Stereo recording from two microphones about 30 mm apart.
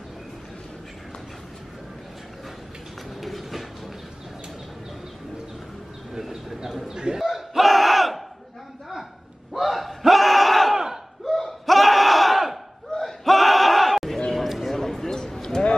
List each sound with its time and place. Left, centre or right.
3.2 s train: centre
6.9 s a man's voice: right
7.2 s battle cry: centre
9.5 s battle cry: centre
11.2 s laughter: centre
11.6 s battle cry: centre
14.6 s a sound: centre